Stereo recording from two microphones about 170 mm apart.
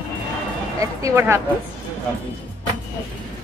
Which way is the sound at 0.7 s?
15° right (ahead or behind).